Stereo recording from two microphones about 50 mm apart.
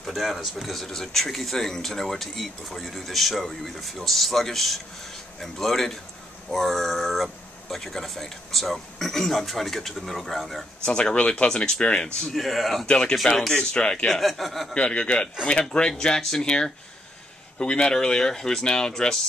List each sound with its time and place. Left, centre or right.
0.0 s speech: centre
10.9 s speech: centre
11.1 s speech: left
12.4 s speech: centre
12.8 s speech: centre
13.4 s speech: centre
13.7 s speech: centre
14.1 s speech: centre
14.7 s speech: left